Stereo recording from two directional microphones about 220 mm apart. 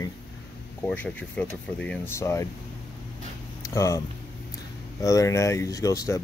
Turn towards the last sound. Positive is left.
turn(degrees=15)  # may be behind; listen again after turning